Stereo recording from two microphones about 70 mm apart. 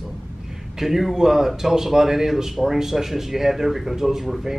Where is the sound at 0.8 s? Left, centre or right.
Centre.